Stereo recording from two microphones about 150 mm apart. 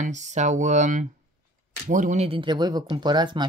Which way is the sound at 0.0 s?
50° right (ahead or behind).